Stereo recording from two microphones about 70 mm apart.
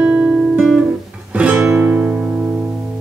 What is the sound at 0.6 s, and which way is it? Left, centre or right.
Guitar, centre.